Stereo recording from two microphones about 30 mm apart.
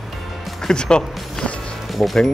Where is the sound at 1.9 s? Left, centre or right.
Centre.